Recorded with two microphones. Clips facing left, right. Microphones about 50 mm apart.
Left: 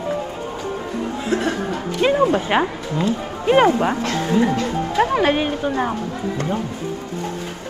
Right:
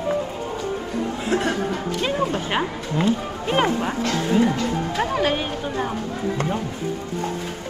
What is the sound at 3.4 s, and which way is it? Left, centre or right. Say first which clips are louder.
Speech: left 7 dB; centre.